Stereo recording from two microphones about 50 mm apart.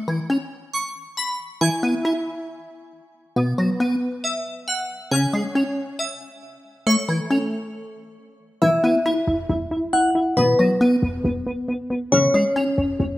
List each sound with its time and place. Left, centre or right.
0.0 s music: centre
8.5 s music: centre
9.8 s music: centre
10.1 s music: centre